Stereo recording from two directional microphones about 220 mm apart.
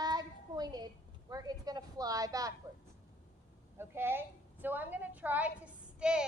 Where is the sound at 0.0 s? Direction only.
20° right (ahead or behind).